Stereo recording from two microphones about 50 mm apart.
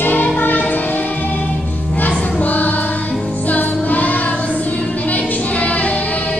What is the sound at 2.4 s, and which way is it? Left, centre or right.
Music, left.